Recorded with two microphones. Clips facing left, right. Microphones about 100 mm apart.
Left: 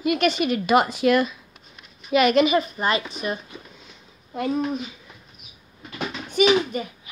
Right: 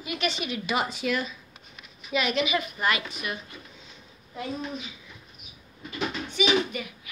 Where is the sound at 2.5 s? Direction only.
35° left (ahead or behind).